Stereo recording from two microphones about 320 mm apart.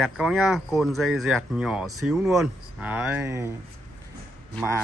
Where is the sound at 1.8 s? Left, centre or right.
Right.